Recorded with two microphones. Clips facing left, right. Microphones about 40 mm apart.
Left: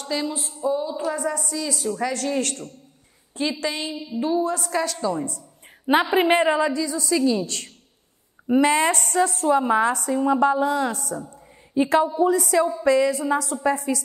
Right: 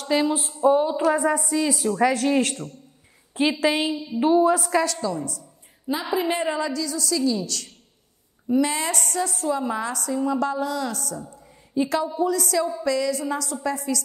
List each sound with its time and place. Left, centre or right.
0.1 s speech: centre
0.6 s a woman's voice: right; by 3.9 s centre
4.1 s a woman's voice: centre
5.0 s a woman's voice: left
6.0 s a woman's voice: left
6.6 s a woman's voice: left